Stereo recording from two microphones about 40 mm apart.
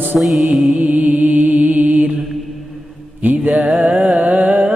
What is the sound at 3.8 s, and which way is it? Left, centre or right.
Music, right.